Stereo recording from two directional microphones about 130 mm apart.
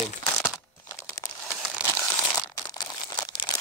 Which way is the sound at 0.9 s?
25° left (ahead or behind).